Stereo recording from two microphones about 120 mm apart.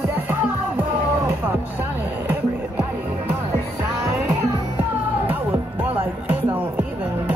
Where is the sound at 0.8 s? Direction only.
15° right (ahead or behind).